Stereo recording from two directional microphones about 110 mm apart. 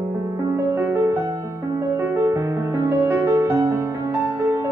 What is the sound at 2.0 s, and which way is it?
Music, 30° right (ahead or behind).